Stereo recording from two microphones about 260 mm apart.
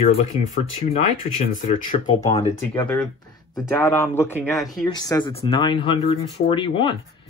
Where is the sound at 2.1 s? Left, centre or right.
Centre.